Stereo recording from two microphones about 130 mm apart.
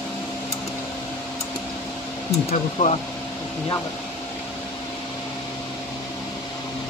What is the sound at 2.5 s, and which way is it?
Speech, 55° left (ahead or behind).